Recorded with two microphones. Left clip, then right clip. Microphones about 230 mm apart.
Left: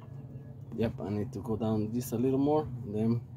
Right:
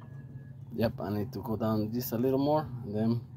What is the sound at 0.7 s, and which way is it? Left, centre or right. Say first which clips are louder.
Speech: right 2 dB; centre.